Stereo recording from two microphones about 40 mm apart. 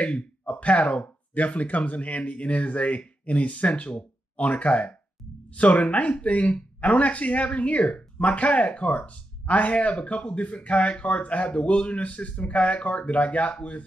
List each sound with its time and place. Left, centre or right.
0.0 s speech: left